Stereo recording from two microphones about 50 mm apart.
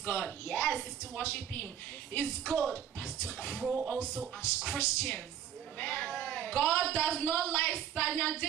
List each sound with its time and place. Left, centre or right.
0.0 s a woman's voice: left
4.4 s a woman's voice: left
5.8 s speech: left